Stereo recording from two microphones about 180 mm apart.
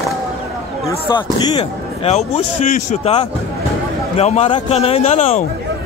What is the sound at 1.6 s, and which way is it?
A man's voice, 35° left (ahead or behind).